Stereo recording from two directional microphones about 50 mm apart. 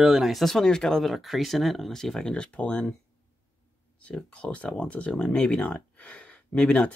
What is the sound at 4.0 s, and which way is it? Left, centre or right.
Speech, left.